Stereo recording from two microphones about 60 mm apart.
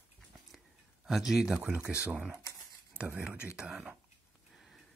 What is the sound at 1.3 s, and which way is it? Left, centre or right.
Speech, centre.